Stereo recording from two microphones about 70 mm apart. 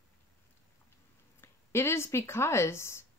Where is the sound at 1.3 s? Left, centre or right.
Left.